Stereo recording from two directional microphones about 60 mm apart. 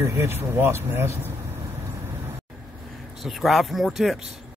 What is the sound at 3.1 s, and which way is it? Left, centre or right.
Speech, centre.